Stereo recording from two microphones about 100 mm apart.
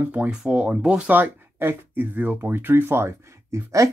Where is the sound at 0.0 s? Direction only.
15° right (ahead or behind).